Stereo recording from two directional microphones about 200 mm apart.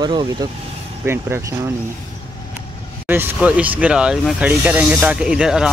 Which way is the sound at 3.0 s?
10° right (ahead or behind).